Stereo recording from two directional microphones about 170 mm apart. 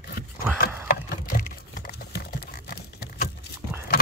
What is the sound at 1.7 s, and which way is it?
Patter, 65° left (ahead or behind).